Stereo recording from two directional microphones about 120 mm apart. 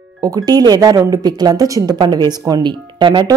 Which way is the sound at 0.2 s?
30° right (ahead or behind).